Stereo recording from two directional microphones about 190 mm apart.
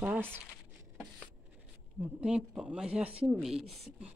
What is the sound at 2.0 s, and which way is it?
Speech, 5° right (ahead or behind).